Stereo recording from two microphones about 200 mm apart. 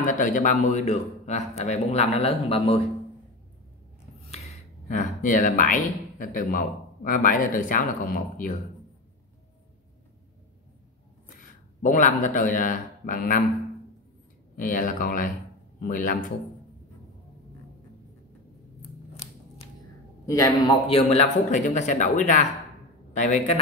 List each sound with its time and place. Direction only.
0.0 s a man's voice: 40° left (ahead or behind)
4.3 s speech: 35° left (ahead or behind)
11.8 s a man's voice: 40° left (ahead or behind)
14.6 s speech: 40° left (ahead or behind)
20.2 s a man's voice: 15° left (ahead or behind)
20.9 s a man's voice: 35° left (ahead or behind)